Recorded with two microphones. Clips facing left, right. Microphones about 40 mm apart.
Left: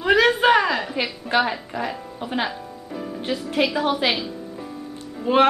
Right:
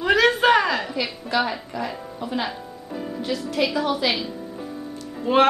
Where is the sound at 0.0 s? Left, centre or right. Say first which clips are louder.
Left 1 dB; centre.